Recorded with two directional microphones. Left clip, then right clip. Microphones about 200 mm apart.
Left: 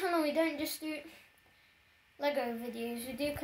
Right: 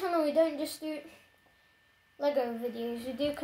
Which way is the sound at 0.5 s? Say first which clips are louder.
Right 2 dB; 15° right (ahead or behind).